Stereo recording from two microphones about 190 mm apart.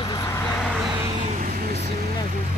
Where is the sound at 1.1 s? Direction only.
35° right (ahead or behind).